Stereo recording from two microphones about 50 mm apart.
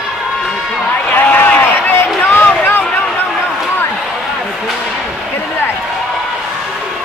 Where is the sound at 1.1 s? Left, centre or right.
Left.